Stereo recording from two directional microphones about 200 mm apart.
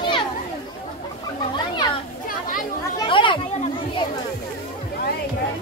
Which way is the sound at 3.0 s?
25° left (ahead or behind).